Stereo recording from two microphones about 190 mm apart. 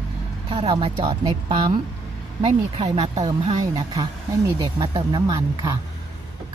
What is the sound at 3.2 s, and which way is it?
Speech, 20° right (ahead or behind).